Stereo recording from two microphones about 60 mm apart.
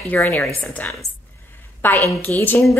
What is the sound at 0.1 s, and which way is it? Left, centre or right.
Speech, left.